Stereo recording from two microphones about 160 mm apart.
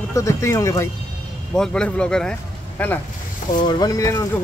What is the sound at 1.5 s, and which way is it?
Speech, 5° left (ahead or behind).